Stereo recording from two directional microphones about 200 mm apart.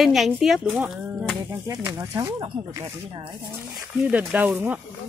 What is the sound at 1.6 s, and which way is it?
Speech, 15° right (ahead or behind).